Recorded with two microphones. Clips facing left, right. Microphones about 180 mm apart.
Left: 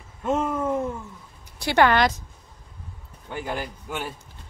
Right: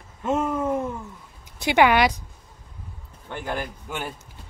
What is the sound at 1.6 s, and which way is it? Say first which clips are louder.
Speech: right 1 dB; 15° right (ahead or behind).